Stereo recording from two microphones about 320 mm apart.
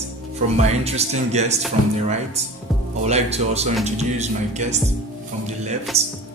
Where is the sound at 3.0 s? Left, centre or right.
Right.